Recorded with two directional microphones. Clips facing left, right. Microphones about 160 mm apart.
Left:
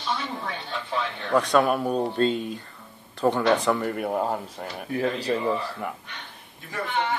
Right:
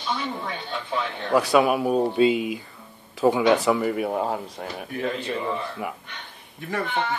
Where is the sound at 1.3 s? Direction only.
5° right (ahead or behind).